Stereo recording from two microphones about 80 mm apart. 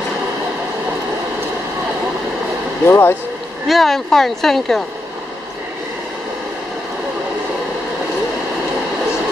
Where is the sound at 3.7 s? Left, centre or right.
Centre.